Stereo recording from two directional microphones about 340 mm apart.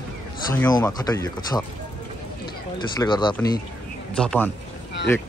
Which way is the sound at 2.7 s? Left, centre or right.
Centre.